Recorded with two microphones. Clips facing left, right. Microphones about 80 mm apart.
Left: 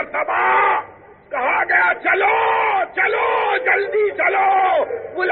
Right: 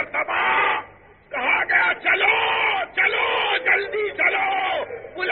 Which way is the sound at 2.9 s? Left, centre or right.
Left.